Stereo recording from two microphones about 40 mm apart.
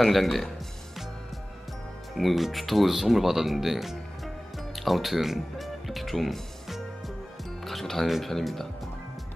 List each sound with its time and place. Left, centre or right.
0.0 s speech: centre
2.1 s speech: centre
7.6 s music: centre
8.1 s speech: centre